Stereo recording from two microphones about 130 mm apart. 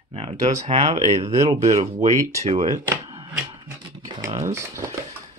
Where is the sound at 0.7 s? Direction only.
50° right (ahead or behind).